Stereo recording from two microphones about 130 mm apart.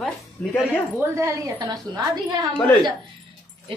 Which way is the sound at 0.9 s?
20° right (ahead or behind).